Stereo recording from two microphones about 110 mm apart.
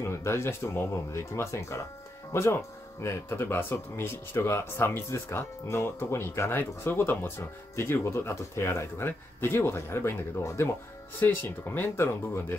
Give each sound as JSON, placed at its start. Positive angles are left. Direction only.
{"t": 0.0, "sound": "speech", "side_deg": 25}